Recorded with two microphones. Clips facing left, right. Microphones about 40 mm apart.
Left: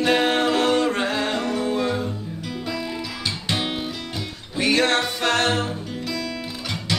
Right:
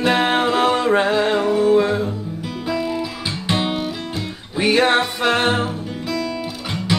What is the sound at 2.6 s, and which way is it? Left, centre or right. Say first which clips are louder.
Guitar: right 7 dB; centre.